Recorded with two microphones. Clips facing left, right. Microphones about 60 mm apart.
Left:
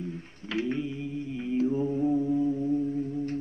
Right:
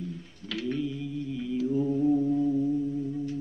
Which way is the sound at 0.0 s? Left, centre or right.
Left.